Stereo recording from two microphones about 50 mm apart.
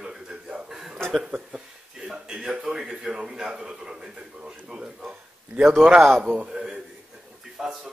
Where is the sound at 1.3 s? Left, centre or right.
Centre.